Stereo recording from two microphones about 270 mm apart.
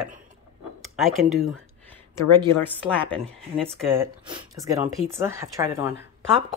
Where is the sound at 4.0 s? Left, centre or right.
Centre.